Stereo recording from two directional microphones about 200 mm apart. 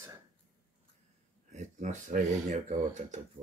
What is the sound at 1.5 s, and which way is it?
Speech, 40° right (ahead or behind).